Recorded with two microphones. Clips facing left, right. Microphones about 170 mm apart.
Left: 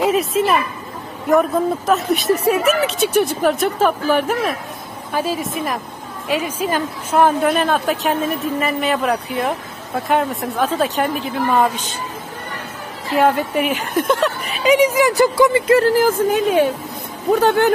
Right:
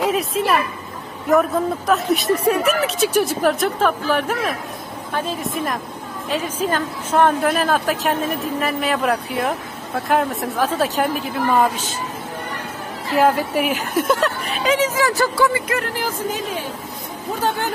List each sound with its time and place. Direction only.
0.0 s speech: centre (ahead or behind)
1.9 s speech: centre (ahead or behind)
13.2 s speech: centre (ahead or behind)
14.6 s speech: 15° left (ahead or behind); by 17.6 s 65° left (ahead or behind)